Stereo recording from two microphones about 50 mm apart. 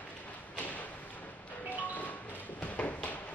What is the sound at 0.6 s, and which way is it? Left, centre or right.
Thump, left.